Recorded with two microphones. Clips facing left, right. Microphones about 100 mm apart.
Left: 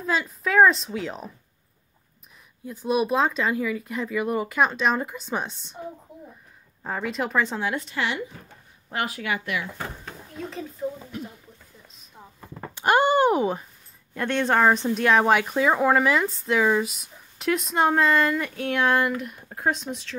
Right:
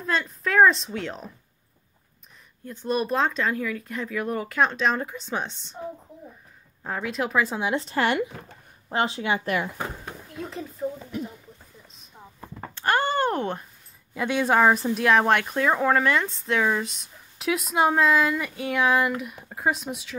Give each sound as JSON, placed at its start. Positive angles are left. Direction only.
{"t": 0.0, "sound": "speech", "side_deg": 5}
{"t": 2.6, "sound": "speech", "side_deg": 5}
{"t": 6.8, "sound": "speech", "side_deg": 0}
{"t": 7.6, "sound": "speech", "side_deg": -30}
{"t": 10.5, "sound": "a sound", "side_deg": 0}
{"t": 12.7, "sound": "speech", "side_deg": 15}
{"t": 14.1, "sound": "speech", "side_deg": -5}